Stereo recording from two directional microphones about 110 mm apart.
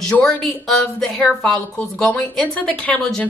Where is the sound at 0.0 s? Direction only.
5° left (ahead or behind).